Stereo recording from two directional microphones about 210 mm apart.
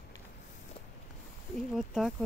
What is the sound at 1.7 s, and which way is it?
Speech, centre (ahead or behind).